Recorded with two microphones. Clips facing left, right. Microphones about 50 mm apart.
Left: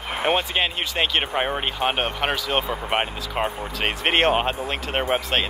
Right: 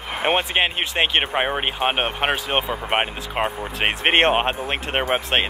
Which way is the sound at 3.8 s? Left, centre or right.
Right.